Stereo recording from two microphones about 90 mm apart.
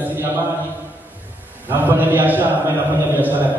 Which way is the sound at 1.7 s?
20° right (ahead or behind).